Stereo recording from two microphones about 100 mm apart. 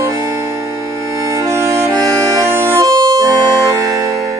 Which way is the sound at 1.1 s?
30° right (ahead or behind).